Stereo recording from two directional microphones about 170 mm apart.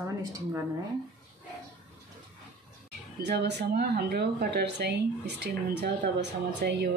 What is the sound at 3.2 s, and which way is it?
Speech, 75° right (ahead or behind).